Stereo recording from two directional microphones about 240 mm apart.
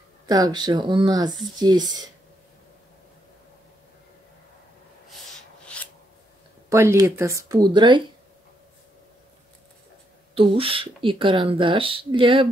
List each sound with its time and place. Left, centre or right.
0.3 s speech: centre
5.7 s a sound: centre
6.7 s speech: centre
10.3 s speech: right